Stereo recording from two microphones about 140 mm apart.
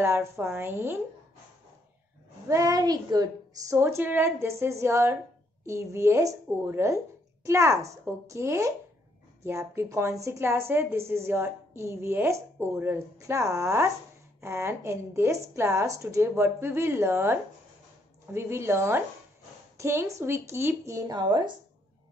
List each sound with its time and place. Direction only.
0.0 s speech: 20° right (ahead or behind)
2.4 s a woman's voice: 20° right (ahead or behind)